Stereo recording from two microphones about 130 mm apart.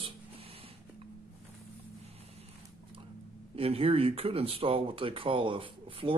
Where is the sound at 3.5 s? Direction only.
45° right (ahead or behind).